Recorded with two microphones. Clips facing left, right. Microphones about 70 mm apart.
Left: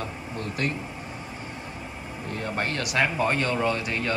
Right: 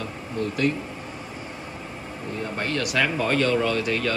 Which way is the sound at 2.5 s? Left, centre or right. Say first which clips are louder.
Right 1 dB; left.